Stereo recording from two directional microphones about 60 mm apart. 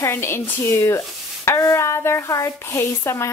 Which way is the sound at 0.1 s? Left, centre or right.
Left.